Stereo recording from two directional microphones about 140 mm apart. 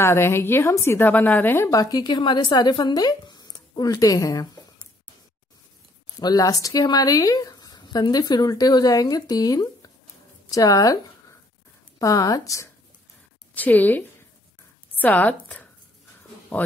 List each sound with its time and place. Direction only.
0.0 s a woman's voice: 20° left (ahead or behind)
6.1 s a woman's voice: 25° left (ahead or behind)
13.6 s a woman's voice: 10° left (ahead or behind)